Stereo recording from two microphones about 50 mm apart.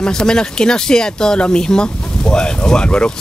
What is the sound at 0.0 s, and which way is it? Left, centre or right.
Speech, centre.